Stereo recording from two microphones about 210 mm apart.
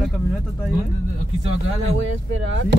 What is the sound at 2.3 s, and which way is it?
Speech, 60° right (ahead or behind).